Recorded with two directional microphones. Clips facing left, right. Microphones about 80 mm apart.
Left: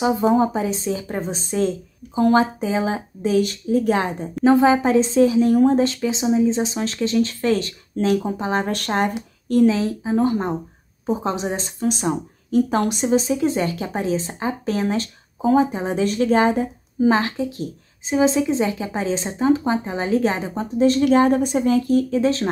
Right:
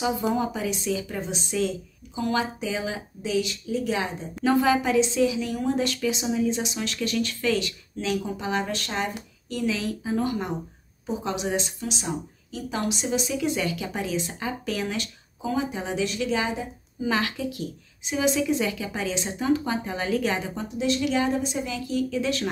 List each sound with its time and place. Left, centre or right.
0.0 s speech: left
4.5 s speech: left
9.8 s speech: left